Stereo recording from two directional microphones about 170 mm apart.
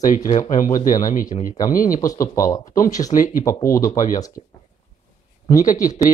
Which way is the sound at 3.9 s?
50° left (ahead or behind).